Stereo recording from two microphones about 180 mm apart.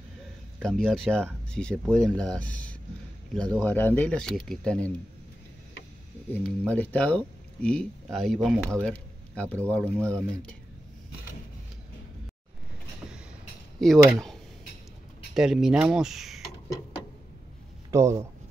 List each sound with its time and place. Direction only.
0.6 s speech: centre (ahead or behind)
6.3 s speech: 5° left (ahead or behind)
13.7 s speech: centre (ahead or behind)
17.9 s speech: 15° right (ahead or behind)